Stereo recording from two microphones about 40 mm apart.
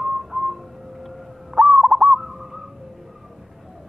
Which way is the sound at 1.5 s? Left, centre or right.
Centre.